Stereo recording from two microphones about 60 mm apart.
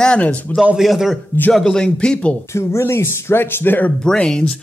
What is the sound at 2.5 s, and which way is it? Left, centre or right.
Speech, left.